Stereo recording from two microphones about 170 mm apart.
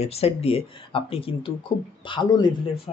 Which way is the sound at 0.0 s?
35° left (ahead or behind).